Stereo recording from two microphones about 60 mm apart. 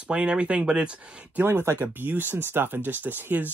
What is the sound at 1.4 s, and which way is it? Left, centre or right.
Speech, right.